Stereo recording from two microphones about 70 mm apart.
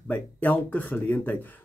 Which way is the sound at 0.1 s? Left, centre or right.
Left.